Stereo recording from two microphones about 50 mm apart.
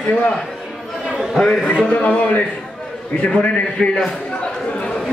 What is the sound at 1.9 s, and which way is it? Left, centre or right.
A man's voice, left.